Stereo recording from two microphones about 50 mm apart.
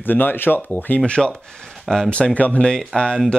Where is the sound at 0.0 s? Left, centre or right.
Left.